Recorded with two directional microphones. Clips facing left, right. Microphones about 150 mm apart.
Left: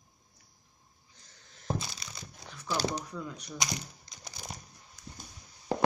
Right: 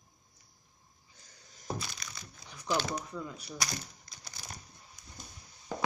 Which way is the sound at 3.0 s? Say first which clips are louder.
Left 1 dB; 5° right (ahead or behind).